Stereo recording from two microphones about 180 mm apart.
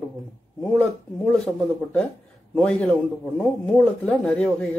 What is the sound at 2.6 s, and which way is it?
Speech, 5° left (ahead or behind).